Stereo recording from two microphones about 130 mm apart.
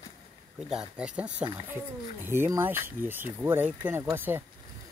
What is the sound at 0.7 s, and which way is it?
Speech, 5° right (ahead or behind).